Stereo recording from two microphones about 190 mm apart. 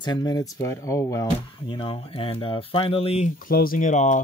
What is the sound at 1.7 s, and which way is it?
Speech, 25° left (ahead or behind).